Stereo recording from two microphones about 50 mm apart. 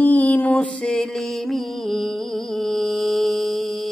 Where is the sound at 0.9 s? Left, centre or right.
Centre.